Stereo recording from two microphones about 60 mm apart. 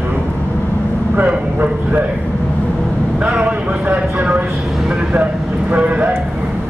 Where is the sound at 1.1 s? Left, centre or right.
Right.